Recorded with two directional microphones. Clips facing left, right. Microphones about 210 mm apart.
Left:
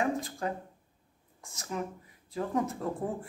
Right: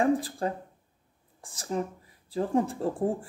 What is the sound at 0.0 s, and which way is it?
Speech, 35° right (ahead or behind).